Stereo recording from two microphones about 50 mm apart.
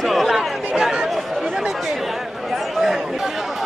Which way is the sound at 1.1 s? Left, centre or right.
Centre.